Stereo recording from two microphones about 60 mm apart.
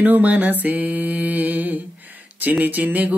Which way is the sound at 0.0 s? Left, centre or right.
Right.